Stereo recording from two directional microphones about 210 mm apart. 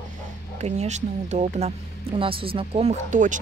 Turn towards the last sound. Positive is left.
turn(degrees=-35)  # may be behind; listen again after turning